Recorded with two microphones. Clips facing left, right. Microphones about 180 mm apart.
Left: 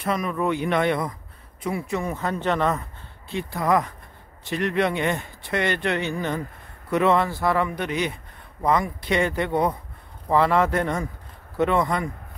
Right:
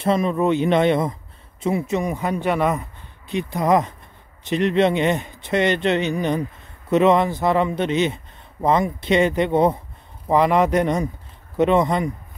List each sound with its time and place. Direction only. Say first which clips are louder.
0.0 s speech: right 6 dB; 25° right (ahead or behind)